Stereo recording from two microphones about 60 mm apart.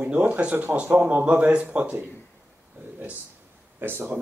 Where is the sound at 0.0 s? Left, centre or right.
Right.